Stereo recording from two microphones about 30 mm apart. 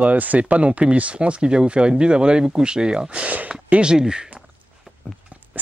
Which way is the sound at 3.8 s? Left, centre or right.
Right.